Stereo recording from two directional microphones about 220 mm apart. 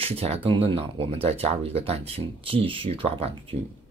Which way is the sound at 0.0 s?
25° right (ahead or behind).